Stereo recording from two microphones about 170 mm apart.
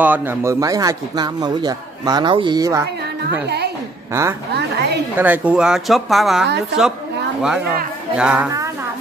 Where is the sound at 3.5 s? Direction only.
75° right (ahead or behind).